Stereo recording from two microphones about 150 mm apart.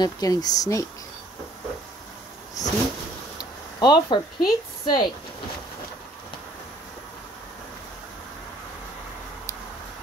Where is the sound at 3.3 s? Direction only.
30° left (ahead or behind).